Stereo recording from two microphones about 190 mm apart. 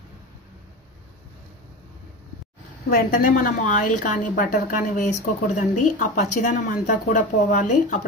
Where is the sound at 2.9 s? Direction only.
50° left (ahead or behind).